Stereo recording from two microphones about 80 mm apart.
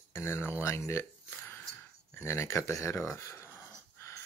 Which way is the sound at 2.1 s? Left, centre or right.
Left.